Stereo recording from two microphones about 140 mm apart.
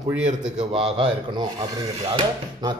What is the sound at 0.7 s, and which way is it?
Speech, 40° right (ahead or behind).